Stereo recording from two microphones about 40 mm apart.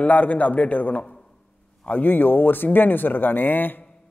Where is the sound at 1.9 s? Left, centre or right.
Left.